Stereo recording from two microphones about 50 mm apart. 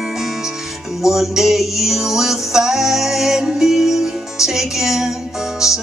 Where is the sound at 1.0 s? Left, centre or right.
Centre.